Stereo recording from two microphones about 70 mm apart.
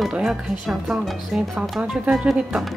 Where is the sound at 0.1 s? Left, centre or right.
Centre.